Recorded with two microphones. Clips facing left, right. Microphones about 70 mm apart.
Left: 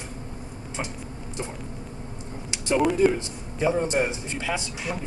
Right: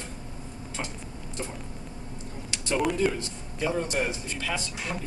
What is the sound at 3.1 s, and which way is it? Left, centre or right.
Speech, left.